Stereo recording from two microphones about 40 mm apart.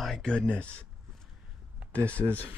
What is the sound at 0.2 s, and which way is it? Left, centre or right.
Speech, left.